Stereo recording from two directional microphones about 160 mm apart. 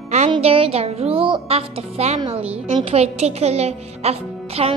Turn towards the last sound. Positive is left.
turn(degrees=-40)  # may be behind; listen again after turning